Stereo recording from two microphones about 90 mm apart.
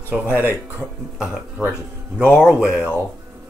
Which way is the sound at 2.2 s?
25° left (ahead or behind).